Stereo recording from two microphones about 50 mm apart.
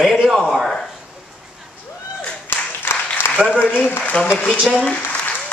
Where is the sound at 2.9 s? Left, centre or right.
Left.